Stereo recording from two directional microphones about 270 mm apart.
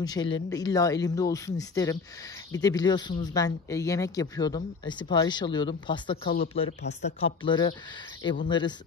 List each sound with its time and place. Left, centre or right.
0.0 s speech: centre
6.6 s speech: left
7.2 s speech: centre